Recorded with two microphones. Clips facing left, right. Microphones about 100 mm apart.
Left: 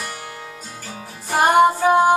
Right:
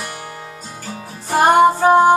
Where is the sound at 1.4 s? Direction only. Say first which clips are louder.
Right 2 dB; 30° right (ahead or behind).